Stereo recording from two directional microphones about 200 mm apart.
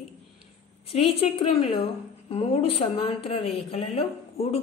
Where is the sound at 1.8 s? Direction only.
30° left (ahead or behind).